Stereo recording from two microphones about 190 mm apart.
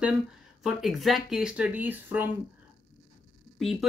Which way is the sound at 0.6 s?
Centre (ahead or behind).